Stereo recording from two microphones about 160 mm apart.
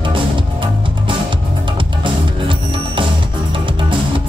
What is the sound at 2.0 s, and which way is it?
Music, 30° right (ahead or behind).